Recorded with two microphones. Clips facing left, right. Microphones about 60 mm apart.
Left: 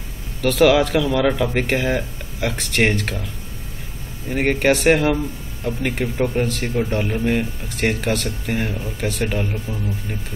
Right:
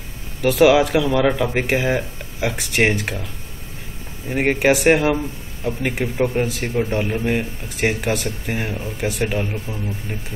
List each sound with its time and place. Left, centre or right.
0.4 s a man's voice: centre
4.3 s a man's voice: centre